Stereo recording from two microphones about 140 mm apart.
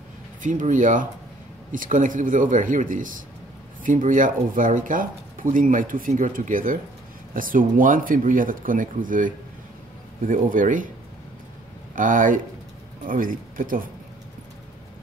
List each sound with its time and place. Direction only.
0.4 s speech: 65° right (ahead or behind)
11.9 s speech: 70° right (ahead or behind)